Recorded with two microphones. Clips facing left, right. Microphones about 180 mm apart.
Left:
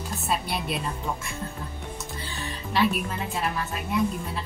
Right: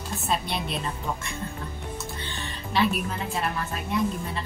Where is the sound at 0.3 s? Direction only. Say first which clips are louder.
Even; 5° left (ahead or behind).